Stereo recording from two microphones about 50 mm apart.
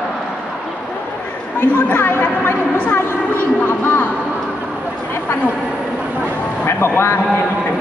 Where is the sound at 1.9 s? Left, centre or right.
Left.